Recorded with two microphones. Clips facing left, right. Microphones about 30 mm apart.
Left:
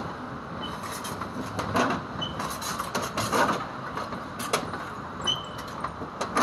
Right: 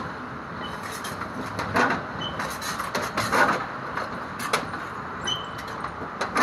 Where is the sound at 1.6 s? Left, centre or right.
Right.